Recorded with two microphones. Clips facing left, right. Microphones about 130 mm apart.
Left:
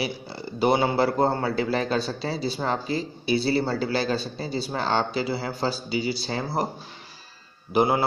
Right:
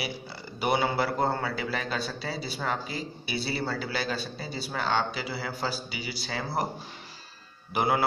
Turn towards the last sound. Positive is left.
turn(degrees=25)  # may be behind; listen again after turning